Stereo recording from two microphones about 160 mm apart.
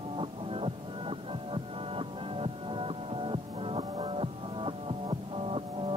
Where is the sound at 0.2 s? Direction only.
35° right (ahead or behind).